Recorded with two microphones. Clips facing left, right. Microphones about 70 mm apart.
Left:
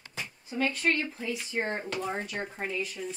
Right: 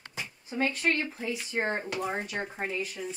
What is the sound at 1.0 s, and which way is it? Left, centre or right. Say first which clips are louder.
Speech: even; centre.